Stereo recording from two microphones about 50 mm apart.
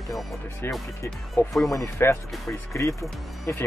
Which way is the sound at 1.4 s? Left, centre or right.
Left.